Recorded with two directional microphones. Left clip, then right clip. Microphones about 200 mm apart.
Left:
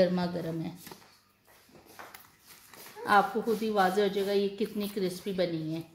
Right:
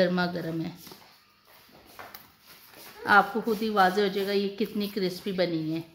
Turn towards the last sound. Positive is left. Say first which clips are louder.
# right 3 dB
turn(degrees=-35)  # may be behind; listen again after turning